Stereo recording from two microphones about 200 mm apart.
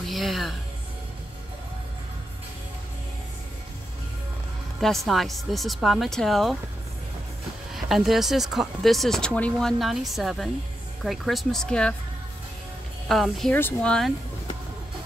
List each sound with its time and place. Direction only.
0.1 s a woman's voice: centre (ahead or behind)
4.7 s speech: centre (ahead or behind)
7.7 s speech: centre (ahead or behind)
13.1 s speech: centre (ahead or behind)